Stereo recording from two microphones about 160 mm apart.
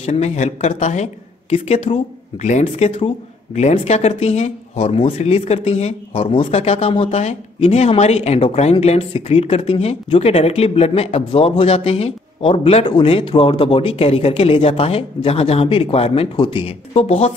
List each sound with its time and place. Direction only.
0.0 s speech: 45° left (ahead or behind)